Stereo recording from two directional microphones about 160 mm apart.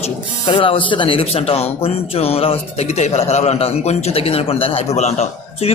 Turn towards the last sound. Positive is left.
turn(degrees=45)  # may be behind; listen again after turning